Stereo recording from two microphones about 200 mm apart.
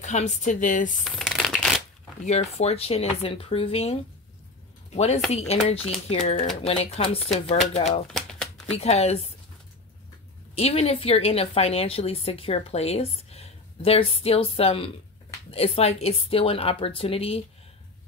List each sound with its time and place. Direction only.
0.0 s speech: 35° left (ahead or behind)
1.0 s a sound: centre (ahead or behind)
2.2 s speech: 35° left (ahead or behind)
8.1 s shuffling cards: 5° left (ahead or behind)
8.7 s speech: 30° left (ahead or behind)
10.5 s speech: 30° left (ahead or behind)